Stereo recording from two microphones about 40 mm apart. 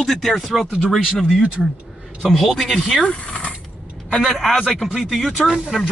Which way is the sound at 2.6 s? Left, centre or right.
Centre.